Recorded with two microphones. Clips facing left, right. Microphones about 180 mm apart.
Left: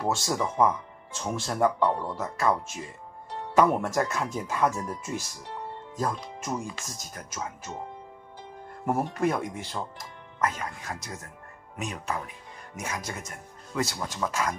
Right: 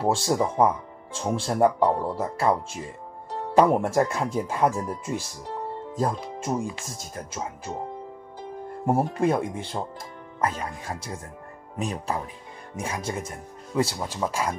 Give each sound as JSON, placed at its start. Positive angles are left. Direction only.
{"t": 0.0, "sound": "speech", "side_deg": -30}
{"t": 8.8, "sound": "speech", "side_deg": -30}